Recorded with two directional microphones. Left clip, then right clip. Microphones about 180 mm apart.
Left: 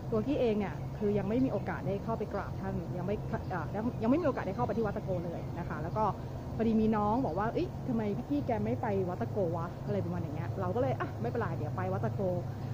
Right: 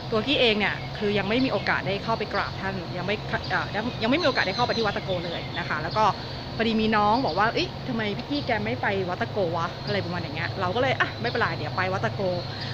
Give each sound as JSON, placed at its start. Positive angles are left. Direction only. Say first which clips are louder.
{"t": 0.3, "sound": "speech", "louder": "right 11 dB", "side_deg": -5}
{"t": 6.6, "sound": "speech", "louder": "right 8 dB", "side_deg": 0}
{"t": 7.1, "sound": "speech", "louder": "right 9 dB", "side_deg": -30}
{"t": 7.5, "sound": "speech", "louder": "right 7 dB", "side_deg": 0}
{"t": 9.2, "sound": "speech", "louder": "right 8 dB", "side_deg": -10}